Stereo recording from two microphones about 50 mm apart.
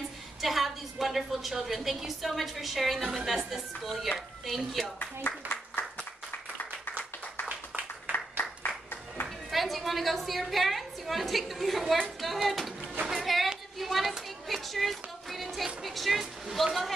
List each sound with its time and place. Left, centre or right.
0.4 s a woman's voice: centre
4.9 s speech: left
8.1 s applause: left
9.5 s a woman's voice: centre
13.1 s a sound: centre